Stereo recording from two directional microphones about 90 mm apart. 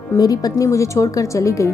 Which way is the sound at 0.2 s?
45° left (ahead or behind).